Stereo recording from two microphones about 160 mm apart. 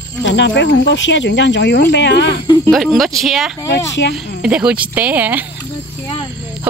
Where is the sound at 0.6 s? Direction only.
90° left.